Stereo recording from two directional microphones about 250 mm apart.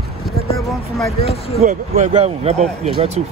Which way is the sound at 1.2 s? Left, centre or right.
Left.